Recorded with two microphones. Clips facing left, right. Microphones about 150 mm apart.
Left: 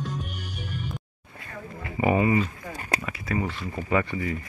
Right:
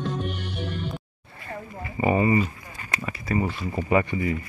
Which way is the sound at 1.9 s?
5° left (ahead or behind).